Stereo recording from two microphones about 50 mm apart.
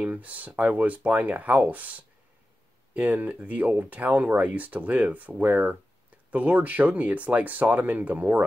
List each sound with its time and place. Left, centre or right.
0.0 s speech: right